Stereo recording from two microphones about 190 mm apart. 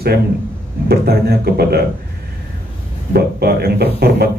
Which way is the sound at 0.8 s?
55° right (ahead or behind).